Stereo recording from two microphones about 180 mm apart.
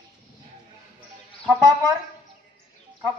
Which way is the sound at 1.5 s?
15° right (ahead or behind).